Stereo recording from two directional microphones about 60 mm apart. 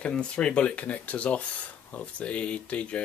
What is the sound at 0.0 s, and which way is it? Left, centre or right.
Speech, centre.